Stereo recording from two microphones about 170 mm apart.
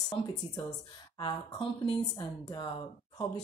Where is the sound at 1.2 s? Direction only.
30° left (ahead or behind).